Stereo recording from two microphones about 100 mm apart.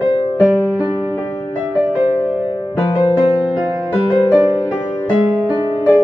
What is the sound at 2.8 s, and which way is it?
Music, 45° left (ahead or behind).